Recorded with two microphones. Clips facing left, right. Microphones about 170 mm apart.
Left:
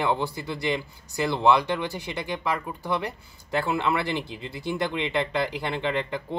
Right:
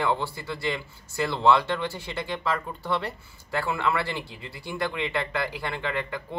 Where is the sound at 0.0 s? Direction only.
20° left (ahead or behind).